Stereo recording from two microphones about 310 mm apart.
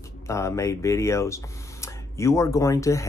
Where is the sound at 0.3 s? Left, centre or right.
Centre.